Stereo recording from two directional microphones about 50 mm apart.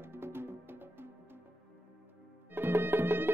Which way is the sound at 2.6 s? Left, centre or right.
Right.